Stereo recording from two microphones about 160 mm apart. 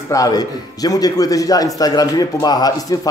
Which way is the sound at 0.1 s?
20° left (ahead or behind).